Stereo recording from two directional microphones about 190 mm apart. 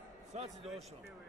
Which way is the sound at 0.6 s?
Centre (ahead or behind).